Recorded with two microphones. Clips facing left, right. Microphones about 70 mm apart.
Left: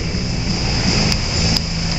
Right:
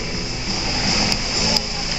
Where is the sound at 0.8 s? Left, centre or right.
Centre.